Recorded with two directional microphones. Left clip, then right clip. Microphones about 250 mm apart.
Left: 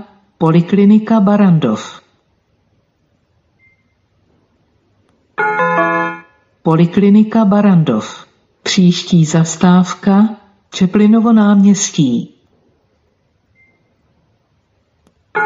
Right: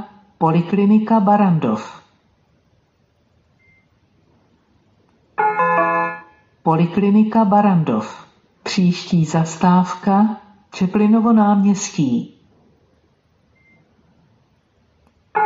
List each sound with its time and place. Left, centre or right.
0.4 s speech: left
5.3 s a sound: left
8.6 s speech: left